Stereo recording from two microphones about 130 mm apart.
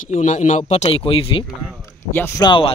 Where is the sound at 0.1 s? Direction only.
70° left (ahead or behind); by 1.4 s 45° left (ahead or behind).